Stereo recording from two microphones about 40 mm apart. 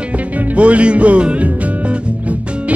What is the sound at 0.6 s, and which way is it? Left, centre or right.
Music, right.